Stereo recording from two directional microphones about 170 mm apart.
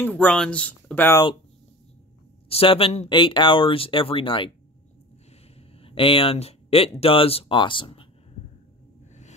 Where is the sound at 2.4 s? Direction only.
35° left (ahead or behind).